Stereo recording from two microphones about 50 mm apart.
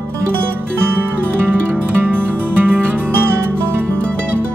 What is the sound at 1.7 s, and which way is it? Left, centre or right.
Music, right.